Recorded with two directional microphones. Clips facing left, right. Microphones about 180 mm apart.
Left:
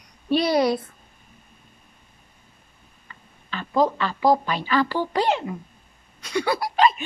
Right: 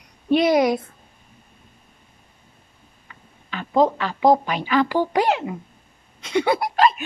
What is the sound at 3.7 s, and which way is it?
A woman's voice, 20° right (ahead or behind).